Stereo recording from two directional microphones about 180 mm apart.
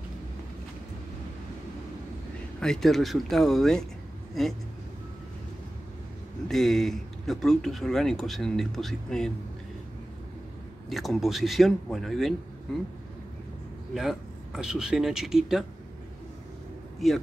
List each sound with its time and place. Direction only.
2.6 s speech: centre (ahead or behind)
6.5 s speech: centre (ahead or behind)
10.9 s speech: centre (ahead or behind)
13.9 s speech: 5° right (ahead or behind)
17.0 s speech: centre (ahead or behind)